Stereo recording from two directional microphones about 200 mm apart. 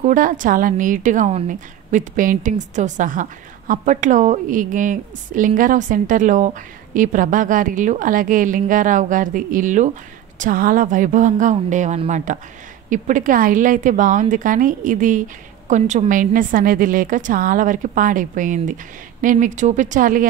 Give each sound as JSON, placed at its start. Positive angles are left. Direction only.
{"t": 0.0, "sound": "a woman's voice", "side_deg": -40}